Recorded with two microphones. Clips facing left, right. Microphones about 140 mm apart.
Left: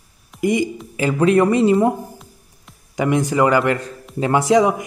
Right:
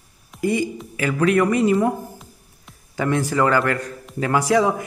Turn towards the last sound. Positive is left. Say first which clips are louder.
# left 3 dB
turn(degrees=20)  # may be behind; listen again after turning